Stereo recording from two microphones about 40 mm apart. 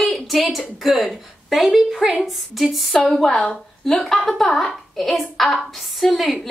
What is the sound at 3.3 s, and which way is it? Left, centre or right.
Speech, left.